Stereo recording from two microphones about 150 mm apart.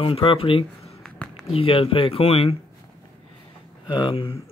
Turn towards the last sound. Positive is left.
turn(degrees=35)  # may be behind; listen again after turning